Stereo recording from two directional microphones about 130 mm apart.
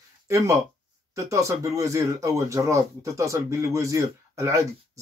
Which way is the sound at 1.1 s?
25° right (ahead or behind).